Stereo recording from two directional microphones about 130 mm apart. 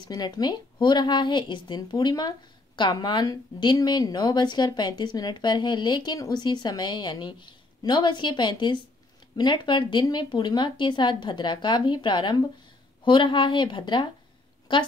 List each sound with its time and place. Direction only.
0.0 s a woman's voice: 35° left (ahead or behind)